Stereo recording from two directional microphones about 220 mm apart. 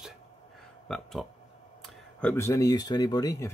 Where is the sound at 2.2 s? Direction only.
10° left (ahead or behind).